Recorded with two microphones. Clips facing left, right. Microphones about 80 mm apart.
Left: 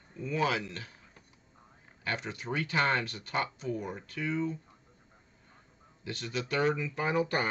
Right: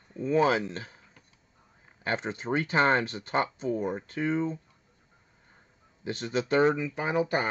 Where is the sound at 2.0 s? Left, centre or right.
Right.